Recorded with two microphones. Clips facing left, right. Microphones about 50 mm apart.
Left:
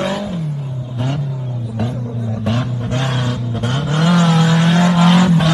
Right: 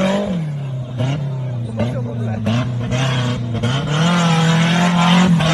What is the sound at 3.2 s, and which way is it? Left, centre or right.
Vehicle, right.